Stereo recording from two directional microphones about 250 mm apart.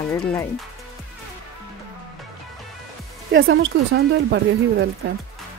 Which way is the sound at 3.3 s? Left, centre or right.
Right.